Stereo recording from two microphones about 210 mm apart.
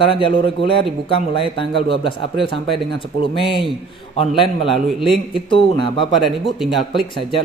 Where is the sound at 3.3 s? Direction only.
25° left (ahead or behind).